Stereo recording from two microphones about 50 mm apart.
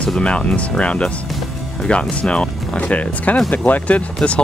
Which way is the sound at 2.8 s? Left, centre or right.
Left.